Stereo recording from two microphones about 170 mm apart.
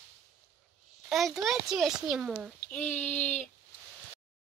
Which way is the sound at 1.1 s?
Centre (ahead or behind).